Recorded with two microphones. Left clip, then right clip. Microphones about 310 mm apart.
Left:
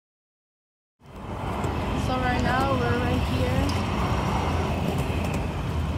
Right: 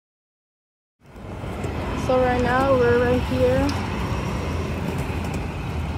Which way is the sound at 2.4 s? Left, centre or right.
Left.